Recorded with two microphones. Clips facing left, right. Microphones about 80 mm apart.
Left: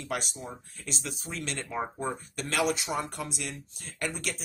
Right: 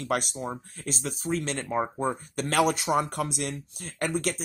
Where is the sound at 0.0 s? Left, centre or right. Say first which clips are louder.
Right 6 dB; right.